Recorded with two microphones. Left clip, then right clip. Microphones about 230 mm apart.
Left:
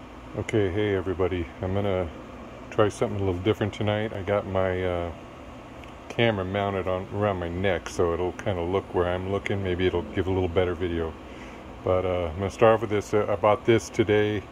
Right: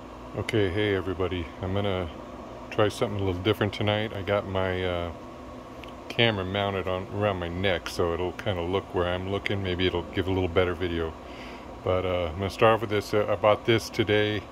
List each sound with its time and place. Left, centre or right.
0.5 s speech: centre
6.1 s speech: centre